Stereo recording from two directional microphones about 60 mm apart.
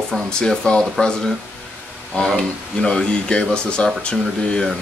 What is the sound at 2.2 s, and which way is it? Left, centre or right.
Speech, left.